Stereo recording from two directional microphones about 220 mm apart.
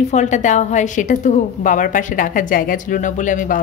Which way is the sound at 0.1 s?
35° left (ahead or behind).